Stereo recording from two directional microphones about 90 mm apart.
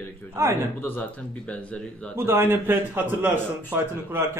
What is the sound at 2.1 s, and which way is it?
Speech, 25° right (ahead or behind).